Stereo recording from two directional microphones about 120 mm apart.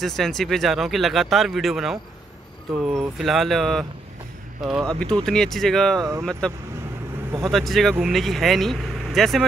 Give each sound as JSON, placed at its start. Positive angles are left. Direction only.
{"t": 0.0, "sound": "speech", "side_deg": 0}
{"t": 4.8, "sound": "speech", "side_deg": 10}
{"t": 5.9, "sound": "speech", "side_deg": -25}
{"t": 7.4, "sound": "speech", "side_deg": 0}